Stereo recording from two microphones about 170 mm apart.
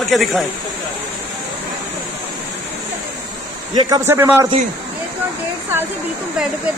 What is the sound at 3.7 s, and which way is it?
Speech, 20° right (ahead or behind).